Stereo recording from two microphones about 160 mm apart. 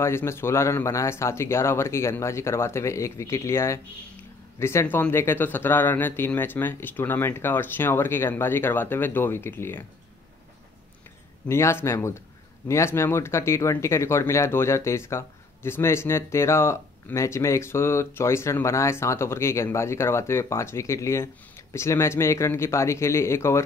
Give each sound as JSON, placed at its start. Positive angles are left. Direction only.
{"t": 0.0, "sound": "speech", "side_deg": 15}
{"t": 11.4, "sound": "speech", "side_deg": 15}